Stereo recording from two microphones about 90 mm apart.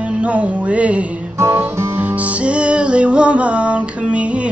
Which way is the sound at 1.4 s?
25° right (ahead or behind).